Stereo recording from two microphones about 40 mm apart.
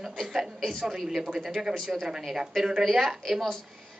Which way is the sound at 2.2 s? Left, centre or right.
Centre.